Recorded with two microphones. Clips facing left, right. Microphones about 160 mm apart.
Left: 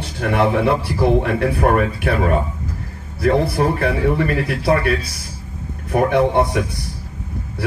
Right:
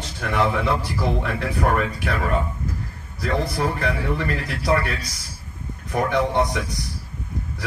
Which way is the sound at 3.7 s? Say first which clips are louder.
Left 6 dB; 55° left (ahead or behind).